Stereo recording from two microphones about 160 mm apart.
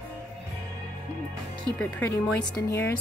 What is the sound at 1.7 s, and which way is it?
Speech, 15° left (ahead or behind).